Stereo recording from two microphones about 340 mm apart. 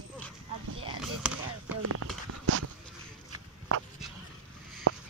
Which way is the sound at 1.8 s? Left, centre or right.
Right.